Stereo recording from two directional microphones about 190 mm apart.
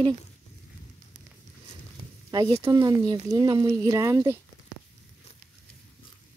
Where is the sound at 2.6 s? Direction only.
20° right (ahead or behind).